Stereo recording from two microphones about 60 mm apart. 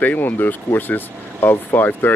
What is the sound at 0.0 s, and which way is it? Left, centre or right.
Speech, left.